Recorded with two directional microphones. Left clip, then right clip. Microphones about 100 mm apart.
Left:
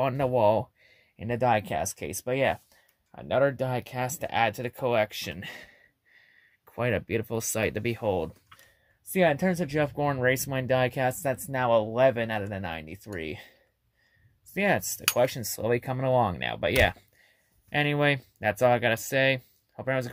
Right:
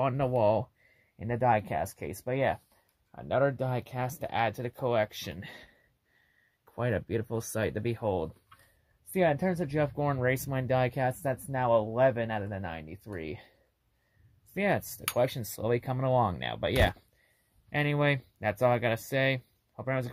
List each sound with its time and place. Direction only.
0.0 s speech: 10° left (ahead or behind)
1.1 s speech: 30° left (ahead or behind)
9.1 s speech: 15° left (ahead or behind)
14.5 s speech: 10° left (ahead or behind)